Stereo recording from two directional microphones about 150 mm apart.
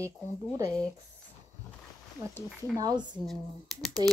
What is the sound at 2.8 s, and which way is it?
Speech, 30° right (ahead or behind).